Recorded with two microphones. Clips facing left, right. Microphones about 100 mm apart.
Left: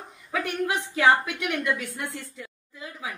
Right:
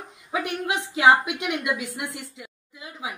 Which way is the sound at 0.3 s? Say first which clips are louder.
Even; 20° right (ahead or behind).